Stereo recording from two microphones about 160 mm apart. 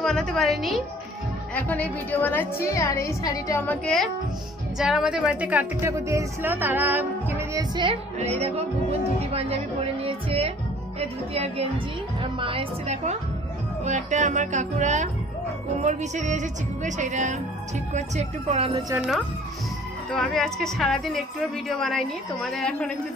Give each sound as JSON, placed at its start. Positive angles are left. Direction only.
{"t": 0.0, "sound": "a woman's voice", "side_deg": 5}
{"t": 3.6, "sound": "a woman's voice", "side_deg": 5}
{"t": 7.7, "sound": "a woman's voice", "side_deg": -30}
{"t": 8.2, "sound": "a woman's voice", "side_deg": -40}
{"t": 9.3, "sound": "music", "side_deg": -40}
{"t": 11.0, "sound": "a woman's voice", "side_deg": -40}
{"t": 13.8, "sound": "music", "side_deg": -50}
{"t": 20.1, "sound": "a woman's voice", "side_deg": 5}